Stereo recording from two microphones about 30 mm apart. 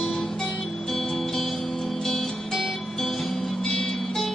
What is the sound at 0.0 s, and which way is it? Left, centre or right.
Music, centre.